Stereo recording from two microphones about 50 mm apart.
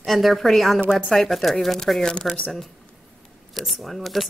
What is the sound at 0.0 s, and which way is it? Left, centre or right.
Speech, centre.